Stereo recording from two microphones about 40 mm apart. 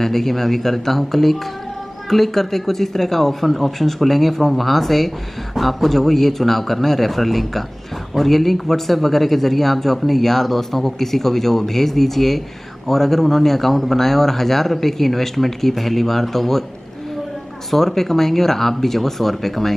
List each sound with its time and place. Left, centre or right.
0.0 s speech: centre
17.6 s speech: centre